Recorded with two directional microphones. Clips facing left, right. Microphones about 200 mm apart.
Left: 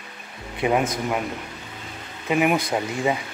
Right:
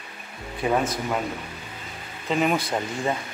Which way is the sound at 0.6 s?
15° left (ahead or behind).